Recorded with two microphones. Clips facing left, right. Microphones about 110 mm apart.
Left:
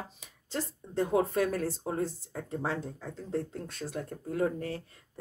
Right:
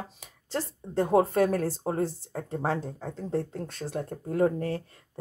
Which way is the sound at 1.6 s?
35° right (ahead or behind).